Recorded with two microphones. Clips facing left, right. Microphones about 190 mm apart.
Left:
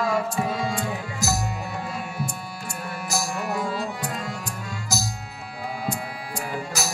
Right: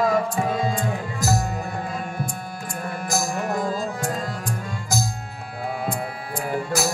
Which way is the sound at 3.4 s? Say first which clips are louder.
Right 2 dB; 45° right (ahead or behind).